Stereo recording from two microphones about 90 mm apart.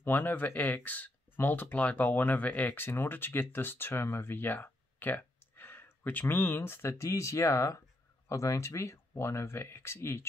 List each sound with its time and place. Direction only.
0.0 s speech: 20° left (ahead or behind)